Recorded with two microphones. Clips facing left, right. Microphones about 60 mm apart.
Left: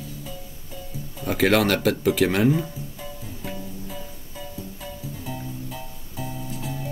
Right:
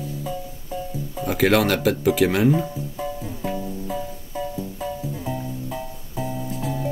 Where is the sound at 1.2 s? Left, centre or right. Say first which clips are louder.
Right 1 dB; centre.